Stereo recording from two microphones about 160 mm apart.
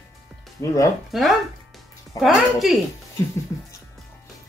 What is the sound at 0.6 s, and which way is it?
Speech, 15° left (ahead or behind).